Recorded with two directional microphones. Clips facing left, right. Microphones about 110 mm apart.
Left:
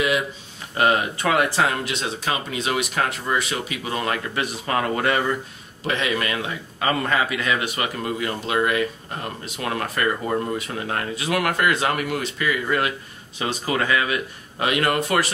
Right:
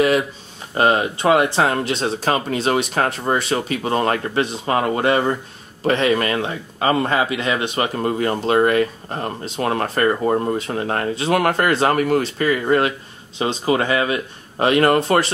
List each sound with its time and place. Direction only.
0.7 s speech: 30° right (ahead or behind)
4.4 s speech: 25° right (ahead or behind)
5.9 s speech: 40° right (ahead or behind)